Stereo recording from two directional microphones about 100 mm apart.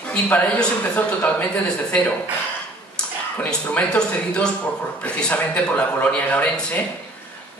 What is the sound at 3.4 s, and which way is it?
A man's voice, 15° left (ahead or behind).